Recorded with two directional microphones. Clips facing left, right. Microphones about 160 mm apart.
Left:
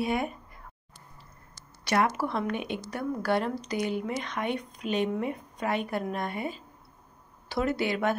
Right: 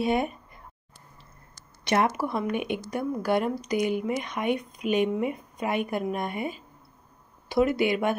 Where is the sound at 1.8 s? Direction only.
20° right (ahead or behind).